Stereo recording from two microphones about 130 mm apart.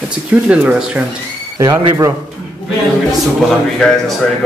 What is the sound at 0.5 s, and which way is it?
Speech, 10° right (ahead or behind).